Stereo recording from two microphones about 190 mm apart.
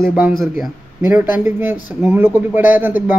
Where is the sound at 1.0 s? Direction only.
10° right (ahead or behind).